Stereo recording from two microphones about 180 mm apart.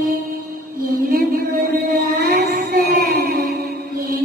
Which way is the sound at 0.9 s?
55° right (ahead or behind).